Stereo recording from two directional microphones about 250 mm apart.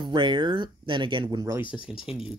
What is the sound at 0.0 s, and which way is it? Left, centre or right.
Speech, centre.